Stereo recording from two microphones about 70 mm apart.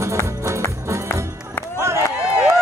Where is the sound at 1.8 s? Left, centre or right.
Right.